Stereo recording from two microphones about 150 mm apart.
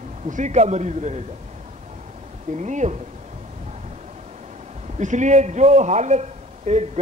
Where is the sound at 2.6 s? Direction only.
50° right (ahead or behind).